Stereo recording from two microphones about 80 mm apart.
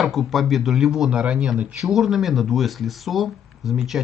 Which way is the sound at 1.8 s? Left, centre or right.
Centre.